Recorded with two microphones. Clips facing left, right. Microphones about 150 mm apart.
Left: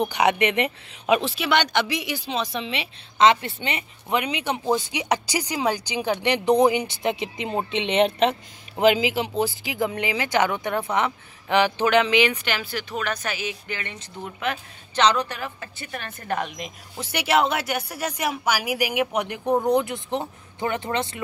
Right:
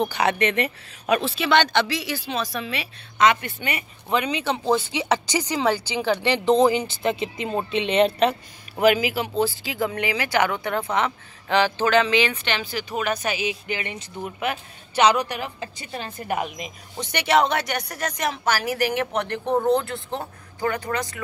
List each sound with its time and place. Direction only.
0.0 s speech: 15° left (ahead or behind)
4.2 s speech: 15° left (ahead or behind)
12.9 s speech: 10° right (ahead or behind)
16.3 s speech: 5° right (ahead or behind); by 21.2 s 25° left (ahead or behind)